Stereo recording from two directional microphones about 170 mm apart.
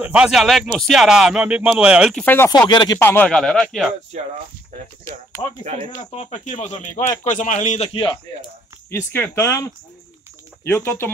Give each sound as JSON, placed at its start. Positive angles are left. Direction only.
{"t": 0.0, "sound": "a man's voice", "side_deg": -5}
{"t": 2.2, "sound": "speech", "side_deg": 15}
{"t": 2.7, "sound": "speech", "side_deg": 25}
{"t": 3.0, "sound": "a man's voice", "side_deg": 10}
{"t": 5.0, "sound": "speech", "side_deg": 20}
{"t": 5.6, "sound": "speech", "side_deg": -45}
{"t": 6.1, "sound": "speech", "side_deg": 40}
{"t": 7.9, "sound": "speech", "side_deg": 30}
{"t": 8.9, "sound": "speech", "side_deg": 15}